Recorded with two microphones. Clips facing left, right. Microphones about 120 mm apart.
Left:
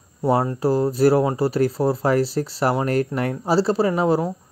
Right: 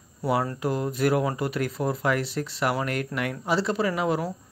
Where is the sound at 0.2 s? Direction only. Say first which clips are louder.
Left 6 dB; 25° left (ahead or behind).